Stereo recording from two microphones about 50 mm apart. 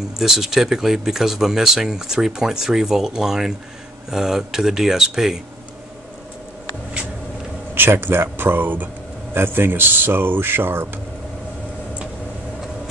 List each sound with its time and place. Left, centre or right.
0.2 s speech: centre
7.7 s speech: right